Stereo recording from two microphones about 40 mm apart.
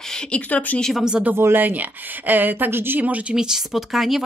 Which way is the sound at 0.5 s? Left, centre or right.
Left.